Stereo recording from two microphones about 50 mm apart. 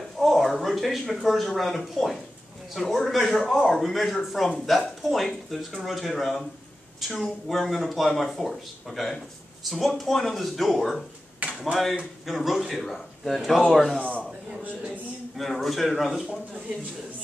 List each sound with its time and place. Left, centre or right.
0.2 s speech: centre
13.9 s a man's voice: left
15.3 s speech: centre